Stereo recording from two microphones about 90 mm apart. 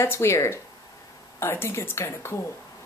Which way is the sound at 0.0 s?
30° left (ahead or behind).